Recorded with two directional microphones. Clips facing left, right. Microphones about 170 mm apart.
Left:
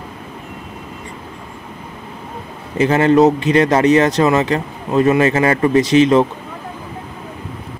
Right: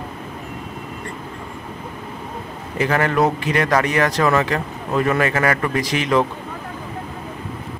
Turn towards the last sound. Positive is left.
turn(degrees=25)  # may be behind; listen again after turning